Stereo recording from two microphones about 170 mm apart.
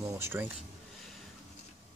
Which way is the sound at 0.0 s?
15° right (ahead or behind).